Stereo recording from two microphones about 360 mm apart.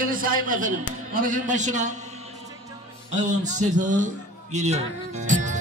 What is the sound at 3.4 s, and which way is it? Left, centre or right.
A man's voice, centre.